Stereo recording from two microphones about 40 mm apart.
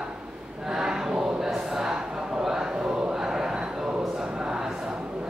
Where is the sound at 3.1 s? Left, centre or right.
Centre.